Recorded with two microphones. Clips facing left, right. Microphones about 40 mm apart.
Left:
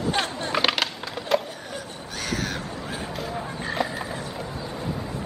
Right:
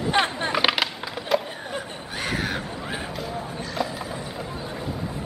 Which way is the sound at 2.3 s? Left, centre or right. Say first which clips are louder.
Right 1 dB; right.